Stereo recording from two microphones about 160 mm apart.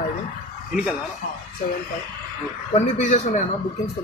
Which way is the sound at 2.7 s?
45° left (ahead or behind).